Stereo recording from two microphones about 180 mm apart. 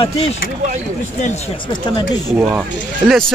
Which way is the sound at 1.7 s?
25° left (ahead or behind).